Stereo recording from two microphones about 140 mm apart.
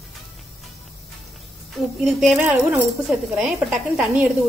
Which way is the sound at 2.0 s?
Centre (ahead or behind).